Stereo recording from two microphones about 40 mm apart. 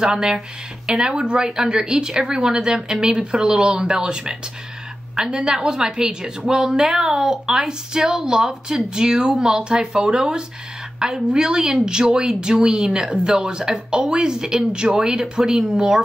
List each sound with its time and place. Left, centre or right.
0.1 s a woman's voice: centre